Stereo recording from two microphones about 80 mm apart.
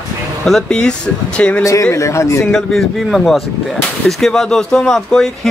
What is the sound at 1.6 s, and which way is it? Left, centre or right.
Speech, left.